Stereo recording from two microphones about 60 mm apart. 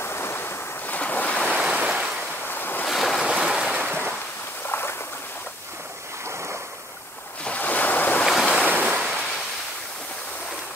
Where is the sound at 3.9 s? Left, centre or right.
Right.